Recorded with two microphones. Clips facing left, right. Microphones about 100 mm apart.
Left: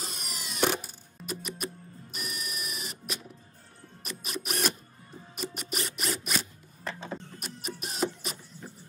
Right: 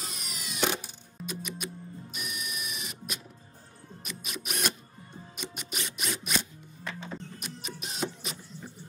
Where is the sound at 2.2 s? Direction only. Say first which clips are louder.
Left 1 dB; 45° left (ahead or behind).